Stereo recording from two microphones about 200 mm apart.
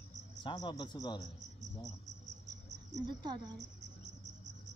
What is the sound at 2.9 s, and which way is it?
Speech, 20° right (ahead or behind).